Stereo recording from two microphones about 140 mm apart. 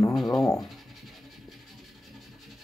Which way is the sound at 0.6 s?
Centre (ahead or behind).